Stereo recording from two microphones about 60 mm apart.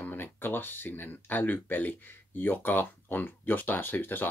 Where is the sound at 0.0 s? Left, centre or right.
Left.